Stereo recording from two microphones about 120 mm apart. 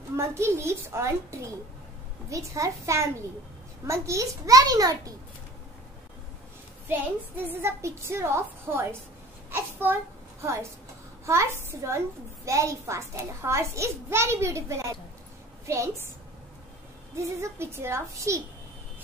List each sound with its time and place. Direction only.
0.1 s a child's voice: 25° right (ahead or behind)
7.4 s a child's voice: 20° right (ahead or behind)
17.2 s a child's voice: 25° right (ahead or behind)